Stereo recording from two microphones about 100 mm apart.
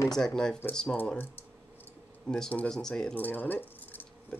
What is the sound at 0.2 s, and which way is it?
Speech, 5° left (ahead or behind).